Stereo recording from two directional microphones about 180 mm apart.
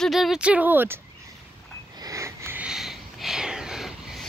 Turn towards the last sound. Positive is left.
turn(degrees=-5)  # may be behind; listen again after turning